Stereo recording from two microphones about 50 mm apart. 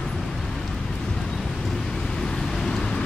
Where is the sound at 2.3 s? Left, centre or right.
Centre.